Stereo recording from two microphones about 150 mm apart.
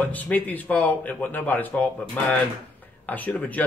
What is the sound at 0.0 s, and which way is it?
Speech, 10° left (ahead or behind).